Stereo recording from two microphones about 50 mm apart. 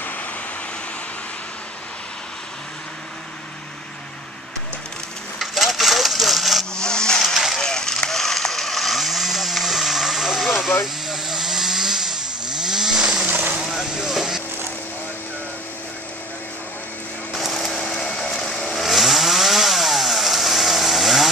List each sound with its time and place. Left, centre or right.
5.4 s a sound: centre
6.7 s wood: centre
7.5 s chainsaw: centre
13.3 s vehicle: right
13.7 s vehicle: centre
17.3 s a sound: centre
18.3 s vehicle: centre
18.8 s chainsaw: centre